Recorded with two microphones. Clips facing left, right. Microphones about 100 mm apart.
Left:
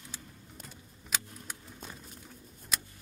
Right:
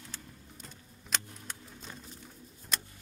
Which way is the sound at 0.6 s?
5° left (ahead or behind).